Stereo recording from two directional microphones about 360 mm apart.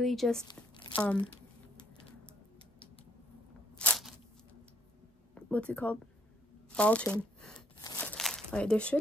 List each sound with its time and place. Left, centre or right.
0.0 s speech: centre
0.5 s speech: centre
3.7 s crunch: centre
5.3 s speech: centre
6.7 s crumpling: centre